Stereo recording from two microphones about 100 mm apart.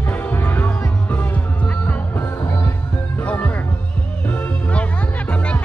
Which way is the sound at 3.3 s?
15° left (ahead or behind).